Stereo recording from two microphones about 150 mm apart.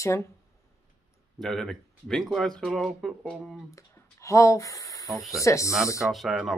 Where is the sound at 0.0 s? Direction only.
20° left (ahead or behind).